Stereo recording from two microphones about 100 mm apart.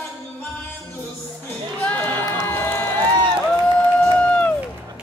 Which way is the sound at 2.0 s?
20° left (ahead or behind).